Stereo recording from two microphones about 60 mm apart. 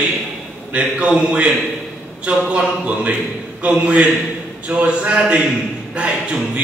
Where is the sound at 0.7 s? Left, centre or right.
Centre.